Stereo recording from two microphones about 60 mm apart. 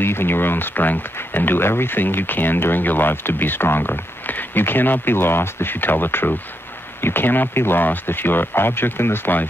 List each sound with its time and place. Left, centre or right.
0.0 s speech: left